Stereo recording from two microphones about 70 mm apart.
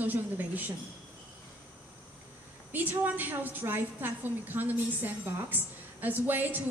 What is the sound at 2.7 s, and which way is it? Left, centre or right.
A woman's voice, right.